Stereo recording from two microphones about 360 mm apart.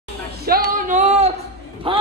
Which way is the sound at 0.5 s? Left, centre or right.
Right.